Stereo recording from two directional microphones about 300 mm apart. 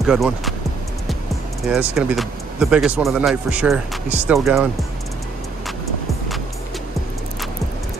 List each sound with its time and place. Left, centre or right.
0.0 s speech: centre
1.7 s speech: centre